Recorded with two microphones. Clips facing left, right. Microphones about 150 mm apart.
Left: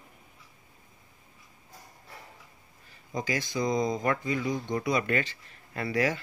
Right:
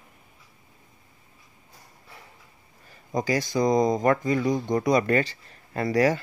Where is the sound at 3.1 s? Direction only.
45° right (ahead or behind).